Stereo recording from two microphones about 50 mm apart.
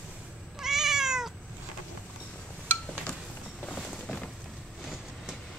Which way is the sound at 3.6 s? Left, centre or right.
Centre.